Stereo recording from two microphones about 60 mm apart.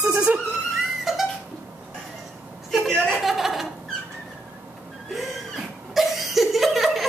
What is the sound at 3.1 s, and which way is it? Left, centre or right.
Chuckle, centre.